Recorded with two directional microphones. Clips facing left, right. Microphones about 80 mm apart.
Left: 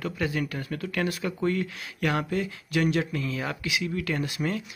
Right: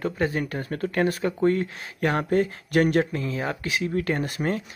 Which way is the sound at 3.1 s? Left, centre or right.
Right.